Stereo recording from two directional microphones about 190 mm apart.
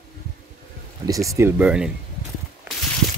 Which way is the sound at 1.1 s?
15° right (ahead or behind).